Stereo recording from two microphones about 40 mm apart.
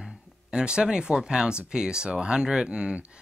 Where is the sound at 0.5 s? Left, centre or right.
Right.